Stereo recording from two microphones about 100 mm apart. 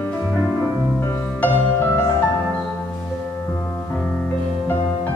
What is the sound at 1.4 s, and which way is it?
Music, 20° left (ahead or behind).